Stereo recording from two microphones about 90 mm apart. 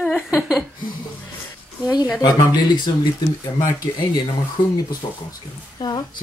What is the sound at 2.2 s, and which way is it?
Speech, 50° left (ahead or behind).